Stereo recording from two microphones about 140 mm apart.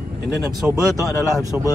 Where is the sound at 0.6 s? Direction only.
10° right (ahead or behind).